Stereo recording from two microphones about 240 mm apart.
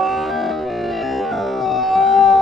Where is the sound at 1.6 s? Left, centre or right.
Centre.